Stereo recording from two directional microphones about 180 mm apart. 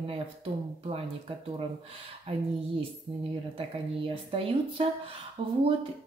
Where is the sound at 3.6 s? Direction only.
30° right (ahead or behind).